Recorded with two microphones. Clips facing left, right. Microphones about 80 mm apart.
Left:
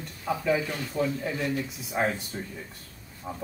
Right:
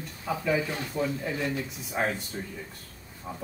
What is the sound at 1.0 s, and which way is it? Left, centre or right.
Speech, centre.